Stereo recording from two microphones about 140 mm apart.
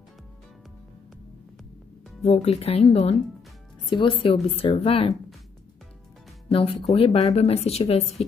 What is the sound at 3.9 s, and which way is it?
Speech, 35° left (ahead or behind).